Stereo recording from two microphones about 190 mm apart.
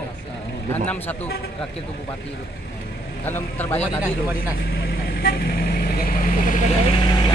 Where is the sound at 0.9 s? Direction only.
10° left (ahead or behind).